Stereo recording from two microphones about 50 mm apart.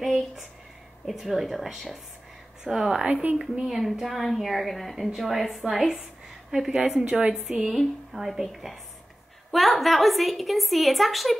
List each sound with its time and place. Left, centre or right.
0.0 s a sound: centre
1.0 s a woman's voice: centre
3.1 s a woman's voice: right
3.6 s a woman's voice: centre
7.1 s a woman's voice: right
7.3 s a woman's voice: centre